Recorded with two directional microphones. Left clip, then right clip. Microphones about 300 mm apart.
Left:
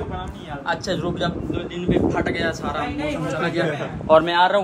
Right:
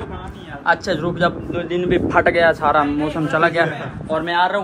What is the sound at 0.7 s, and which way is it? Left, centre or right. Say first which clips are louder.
Speech: right 6 dB; centre.